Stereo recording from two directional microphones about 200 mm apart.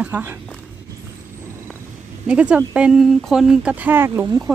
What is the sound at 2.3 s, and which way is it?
Speech, 5° right (ahead or behind).